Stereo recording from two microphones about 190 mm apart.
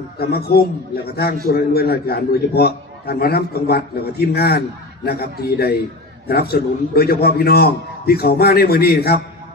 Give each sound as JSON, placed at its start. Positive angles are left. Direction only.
{"t": 0.2, "sound": "a man's voice", "side_deg": 55}